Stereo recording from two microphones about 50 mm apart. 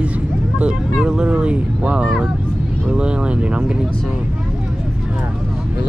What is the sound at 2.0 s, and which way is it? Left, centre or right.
Speech, centre.